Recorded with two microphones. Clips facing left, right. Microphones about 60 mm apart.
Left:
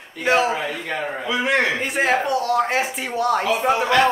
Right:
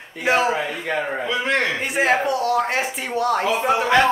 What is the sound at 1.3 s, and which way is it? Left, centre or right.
Speech, centre.